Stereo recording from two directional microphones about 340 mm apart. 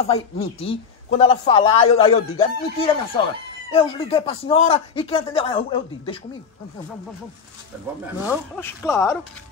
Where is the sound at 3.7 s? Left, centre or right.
Centre.